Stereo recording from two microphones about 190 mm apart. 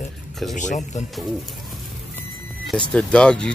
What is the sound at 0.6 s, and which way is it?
Speech, 40° left (ahead or behind).